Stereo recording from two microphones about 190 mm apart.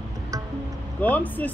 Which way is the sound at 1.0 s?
10° left (ahead or behind).